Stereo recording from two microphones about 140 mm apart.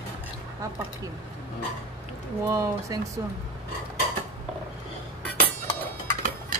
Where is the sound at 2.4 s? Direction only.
25° right (ahead or behind).